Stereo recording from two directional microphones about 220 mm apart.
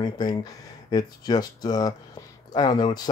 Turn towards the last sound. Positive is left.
turn(degrees=20)  # may be behind; listen again after turning